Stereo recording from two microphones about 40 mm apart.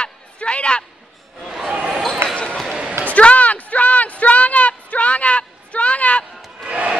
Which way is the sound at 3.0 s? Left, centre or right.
Left.